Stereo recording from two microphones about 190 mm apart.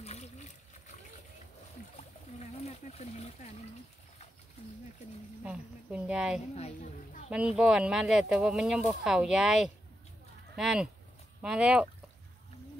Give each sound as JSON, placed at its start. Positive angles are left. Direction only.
{"t": 0.0, "sound": "splash", "side_deg": 35}
{"t": 2.0, "sound": "a sound", "side_deg": 35}
{"t": 5.4, "sound": "speech", "side_deg": -5}
{"t": 6.5, "sound": "a woman's voice", "side_deg": 35}
{"t": 7.2, "sound": "speech", "side_deg": -5}